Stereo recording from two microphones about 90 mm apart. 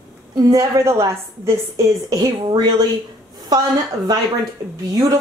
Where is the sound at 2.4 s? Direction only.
60° right (ahead or behind).